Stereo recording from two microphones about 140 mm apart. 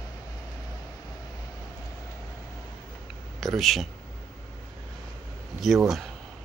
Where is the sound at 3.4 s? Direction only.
Centre (ahead or behind).